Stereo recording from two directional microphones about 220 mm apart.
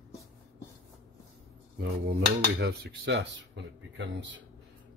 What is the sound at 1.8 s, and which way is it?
A man's voice, 45° right (ahead or behind).